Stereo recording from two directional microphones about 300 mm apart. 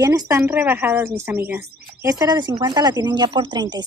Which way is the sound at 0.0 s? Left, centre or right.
Centre.